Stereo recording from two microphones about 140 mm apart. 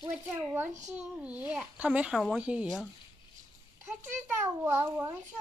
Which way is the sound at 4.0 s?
15° right (ahead or behind).